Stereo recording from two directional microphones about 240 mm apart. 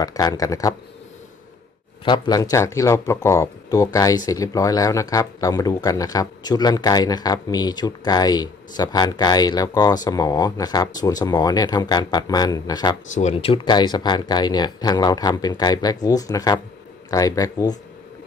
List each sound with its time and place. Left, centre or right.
0.0 s speech: centre
2.0 s speech: centre
13.1 s speech: left